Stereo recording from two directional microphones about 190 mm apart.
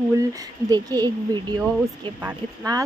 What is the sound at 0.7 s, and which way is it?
A woman's voice, 20° right (ahead or behind).